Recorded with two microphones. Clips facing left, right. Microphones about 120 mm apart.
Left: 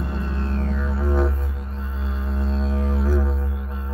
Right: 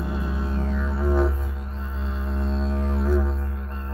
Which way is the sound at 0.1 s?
5° right (ahead or behind).